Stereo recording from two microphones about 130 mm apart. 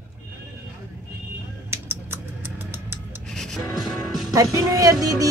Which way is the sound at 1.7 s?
20° right (ahead or behind).